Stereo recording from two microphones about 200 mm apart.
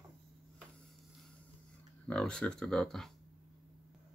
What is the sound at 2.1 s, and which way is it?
Speech, 5° left (ahead or behind).